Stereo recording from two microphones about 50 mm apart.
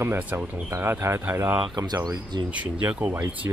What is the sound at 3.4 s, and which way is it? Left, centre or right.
Speech, right.